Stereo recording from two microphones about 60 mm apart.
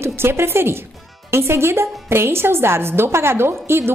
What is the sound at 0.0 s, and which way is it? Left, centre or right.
A woman's voice, right.